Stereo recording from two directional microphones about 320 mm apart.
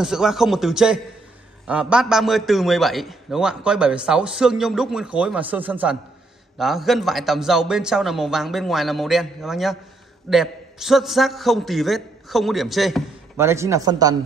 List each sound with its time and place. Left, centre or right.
0.0 s a man's voice: centre